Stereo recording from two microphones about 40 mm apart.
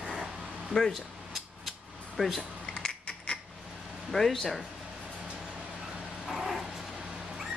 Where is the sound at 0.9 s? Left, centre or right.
Centre.